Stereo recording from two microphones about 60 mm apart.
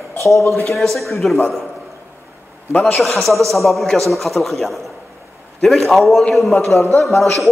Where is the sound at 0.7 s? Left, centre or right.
Centre.